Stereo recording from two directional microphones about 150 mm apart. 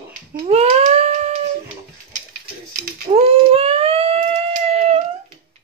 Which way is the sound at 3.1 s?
40° right (ahead or behind).